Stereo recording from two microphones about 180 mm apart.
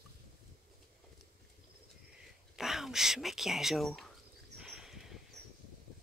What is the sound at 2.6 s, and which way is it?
Speech, centre (ahead or behind).